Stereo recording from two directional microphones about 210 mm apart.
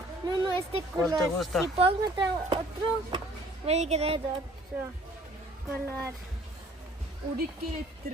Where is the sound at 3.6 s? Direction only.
30° right (ahead or behind).